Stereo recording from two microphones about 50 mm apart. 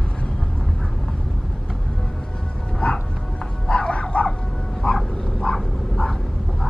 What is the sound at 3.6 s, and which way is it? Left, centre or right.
Bow-wow, left.